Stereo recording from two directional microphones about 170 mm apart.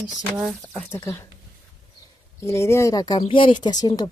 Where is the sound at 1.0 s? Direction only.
15° left (ahead or behind).